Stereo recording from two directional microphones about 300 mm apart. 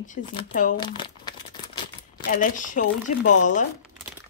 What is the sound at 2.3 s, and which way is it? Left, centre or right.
A woman's voice, left.